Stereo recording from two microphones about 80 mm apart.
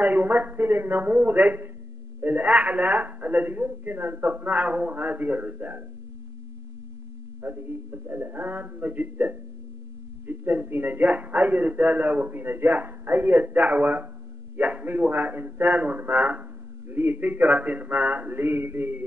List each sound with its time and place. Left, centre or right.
0.0 s a man's voice: right
7.4 s a man's voice: right